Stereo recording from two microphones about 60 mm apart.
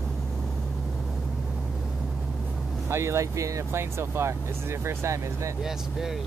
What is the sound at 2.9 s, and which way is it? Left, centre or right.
Speech, right.